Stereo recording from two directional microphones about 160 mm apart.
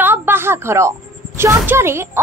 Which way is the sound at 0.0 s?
15° right (ahead or behind).